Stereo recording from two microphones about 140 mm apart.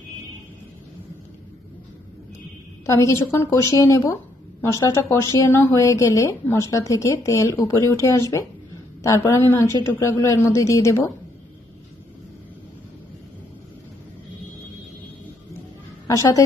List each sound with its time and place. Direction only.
2.9 s a woman's voice: 20° left (ahead or behind)
16.1 s a woman's voice: 25° left (ahead or behind)